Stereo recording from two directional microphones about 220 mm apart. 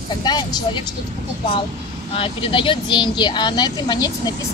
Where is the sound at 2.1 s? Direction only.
25° left (ahead or behind).